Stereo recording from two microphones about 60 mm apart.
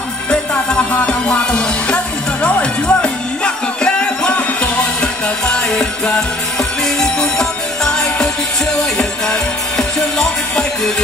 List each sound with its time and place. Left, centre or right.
0.3 s music: centre